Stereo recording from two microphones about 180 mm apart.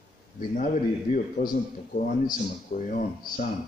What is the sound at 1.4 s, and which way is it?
Speech, 55° left (ahead or behind).